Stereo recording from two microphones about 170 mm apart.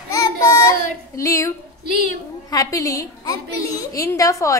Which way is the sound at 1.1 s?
20° left (ahead or behind).